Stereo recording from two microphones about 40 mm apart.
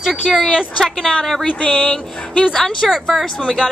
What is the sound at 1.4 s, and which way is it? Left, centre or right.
Speech, left.